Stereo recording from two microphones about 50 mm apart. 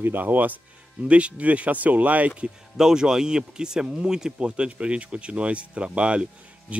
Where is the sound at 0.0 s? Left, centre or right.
Right.